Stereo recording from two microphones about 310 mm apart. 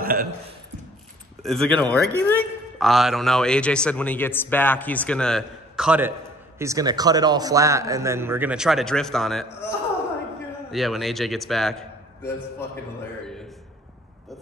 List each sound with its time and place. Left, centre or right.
0.0 s speech: right
1.4 s a man's voice: centre